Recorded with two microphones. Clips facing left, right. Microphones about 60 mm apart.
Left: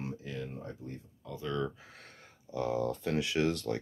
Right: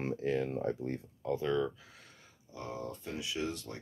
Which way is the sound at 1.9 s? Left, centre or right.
Left.